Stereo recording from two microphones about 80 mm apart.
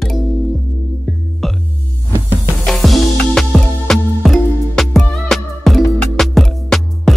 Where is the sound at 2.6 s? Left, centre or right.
Centre.